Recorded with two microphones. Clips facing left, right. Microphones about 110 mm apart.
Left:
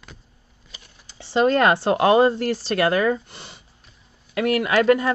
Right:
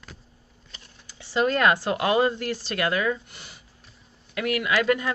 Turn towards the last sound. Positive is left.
turn(degrees=40)  # may be behind; listen again after turning